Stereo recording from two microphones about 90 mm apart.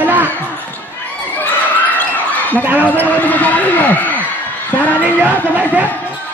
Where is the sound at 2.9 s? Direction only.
15° left (ahead or behind).